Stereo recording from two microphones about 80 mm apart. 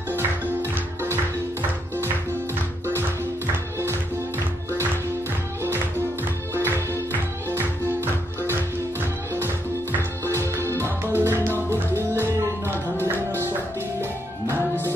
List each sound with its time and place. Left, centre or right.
0.1 s music: right
6.6 s music: left
7.4 s music: right
10.2 s music: right